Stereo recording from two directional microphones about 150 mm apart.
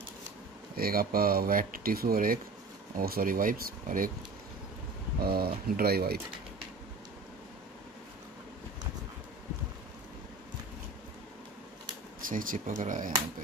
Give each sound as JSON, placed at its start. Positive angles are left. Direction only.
{"t": 0.7, "sound": "speech", "side_deg": -80}
{"t": 5.2, "sound": "speech", "side_deg": -90}
{"t": 12.2, "sound": "speech", "side_deg": -65}